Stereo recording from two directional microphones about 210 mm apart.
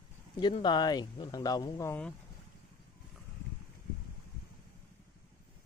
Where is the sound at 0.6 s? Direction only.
20° left (ahead or behind).